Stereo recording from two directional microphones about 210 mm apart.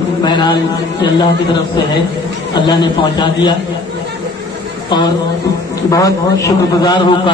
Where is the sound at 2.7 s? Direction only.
20° left (ahead or behind).